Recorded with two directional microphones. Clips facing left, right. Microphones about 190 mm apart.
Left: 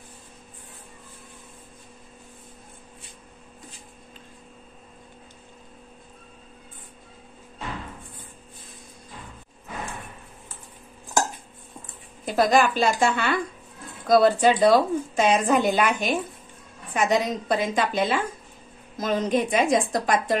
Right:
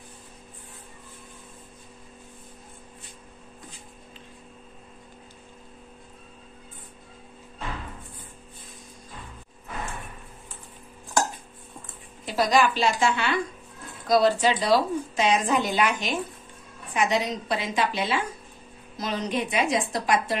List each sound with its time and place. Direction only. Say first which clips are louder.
12.3 s a woman's voice: left 2 dB; 50° left (ahead or behind)